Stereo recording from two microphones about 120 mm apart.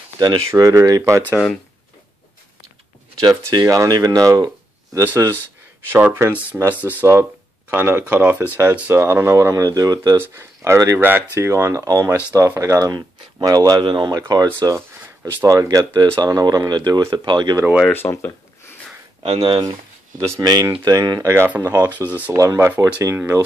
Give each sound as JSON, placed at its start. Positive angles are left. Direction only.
{"t": 0.2, "sound": "speech", "side_deg": -30}
{"t": 3.2, "sound": "speech", "side_deg": -35}
{"t": 10.1, "sound": "speech", "side_deg": -20}
{"t": 11.0, "sound": "speech", "side_deg": -15}
{"t": 17.9, "sound": "speech", "side_deg": 20}
{"t": 19.2, "sound": "speech", "side_deg": -50}
{"t": 20.2, "sound": "speech", "side_deg": -30}